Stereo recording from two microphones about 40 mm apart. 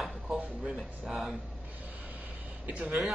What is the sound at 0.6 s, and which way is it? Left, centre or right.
Speech, centre.